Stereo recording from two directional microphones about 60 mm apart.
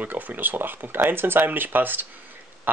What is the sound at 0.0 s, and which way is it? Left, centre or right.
Speech, right.